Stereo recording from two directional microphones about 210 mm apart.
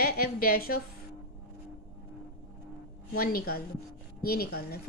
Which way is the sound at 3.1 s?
45° left (ahead or behind).